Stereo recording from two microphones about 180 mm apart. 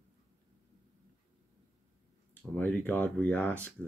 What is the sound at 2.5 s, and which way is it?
Speech, 10° left (ahead or behind).